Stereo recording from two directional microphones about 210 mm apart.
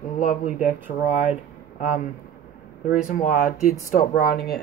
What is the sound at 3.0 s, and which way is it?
Speech, 40° left (ahead or behind).